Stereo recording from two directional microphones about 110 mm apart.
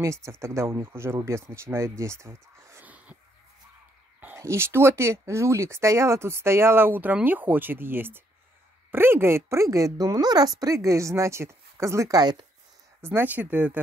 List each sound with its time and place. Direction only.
0.0 s speech: 25° right (ahead or behind)
4.2 s speech: 20° right (ahead or behind); by 12.4 s 40° right (ahead or behind)
13.0 s speech: 20° right (ahead or behind)